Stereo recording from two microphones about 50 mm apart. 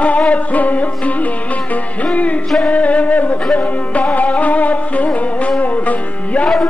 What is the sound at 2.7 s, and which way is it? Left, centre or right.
Music, left.